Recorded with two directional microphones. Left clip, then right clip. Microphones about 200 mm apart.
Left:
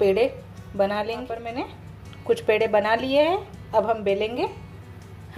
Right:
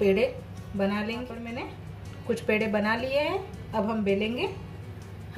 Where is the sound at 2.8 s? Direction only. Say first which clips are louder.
Left 6 dB; 40° left (ahead or behind).